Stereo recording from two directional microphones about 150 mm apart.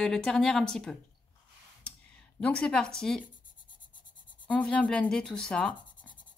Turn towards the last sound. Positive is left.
turn(degrees=5)  # may be behind; listen again after turning